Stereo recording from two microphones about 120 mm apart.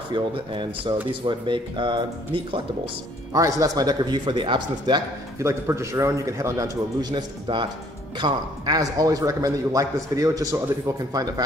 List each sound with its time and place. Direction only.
0.1 s speech: 40° right (ahead or behind)
3.3 s speech: 30° right (ahead or behind)
5.4 s a man's voice: 25° right (ahead or behind)